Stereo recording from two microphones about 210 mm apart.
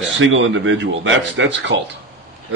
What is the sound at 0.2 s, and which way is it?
Speech, 65° right (ahead or behind).